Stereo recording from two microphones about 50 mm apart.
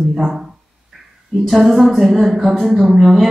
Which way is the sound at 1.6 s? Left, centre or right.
Right.